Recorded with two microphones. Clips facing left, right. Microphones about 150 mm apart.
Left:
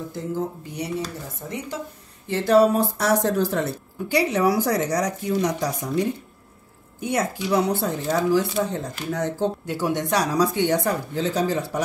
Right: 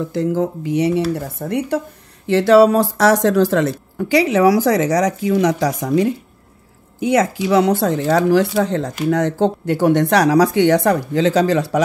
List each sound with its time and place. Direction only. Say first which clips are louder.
0.0 s speech: right 9 dB; 90° right
1.1 s speech: right 11 dB; 65° right (ahead or behind)
2.2 s speech: right 6 dB; 85° right